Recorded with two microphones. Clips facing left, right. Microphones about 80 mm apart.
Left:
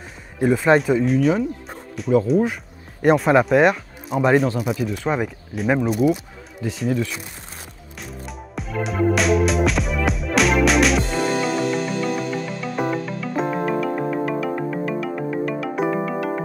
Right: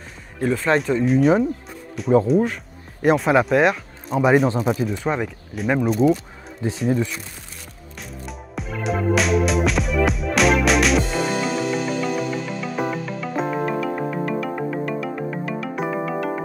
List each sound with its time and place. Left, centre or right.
0.4 s speech: centre
4.5 s speech: right
5.1 s speech: centre
6.6 s speech: right
8.0 s music: centre